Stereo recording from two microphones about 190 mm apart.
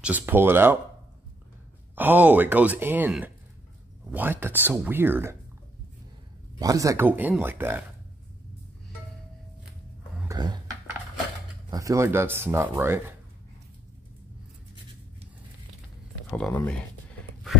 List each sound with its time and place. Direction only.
0.0 s speech: 10° right (ahead or behind)
2.0 s speech: 10° right (ahead or behind)
6.6 s speech: 20° right (ahead or behind)
10.2 s a sound: 20° right (ahead or behind)
11.7 s speech: 15° right (ahead or behind)
16.5 s speech: 5° left (ahead or behind)